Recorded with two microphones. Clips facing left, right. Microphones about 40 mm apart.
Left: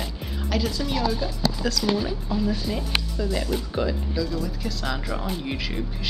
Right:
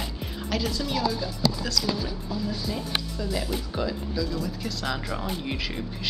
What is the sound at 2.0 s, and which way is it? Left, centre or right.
Speech, left.